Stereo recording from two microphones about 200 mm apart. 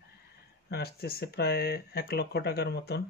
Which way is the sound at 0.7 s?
50° left (ahead or behind).